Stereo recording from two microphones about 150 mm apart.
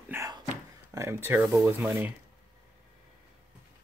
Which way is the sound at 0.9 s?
20° right (ahead or behind).